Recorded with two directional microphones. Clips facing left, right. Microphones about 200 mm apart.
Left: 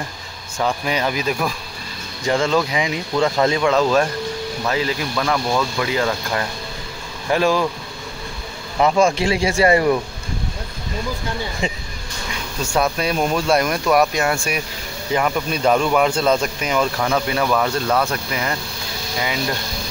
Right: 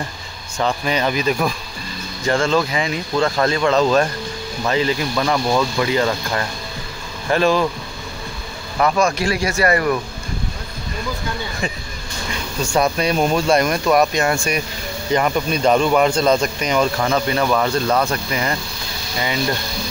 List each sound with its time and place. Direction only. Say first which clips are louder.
0.6 s speech: right 1 dB; 10° left (ahead or behind)
2.5 s speech: even; 15° left (ahead or behind)
5.1 s speech: right 1 dB; 10° right (ahead or behind)
5.8 s speech: right 2 dB; centre (ahead or behind)
8.7 s speech: left 2 dB; 25° left (ahead or behind)
11.6 s speech: left 1 dB; 25° left (ahead or behind)
12.7 s speech: right 2 dB; centre (ahead or behind)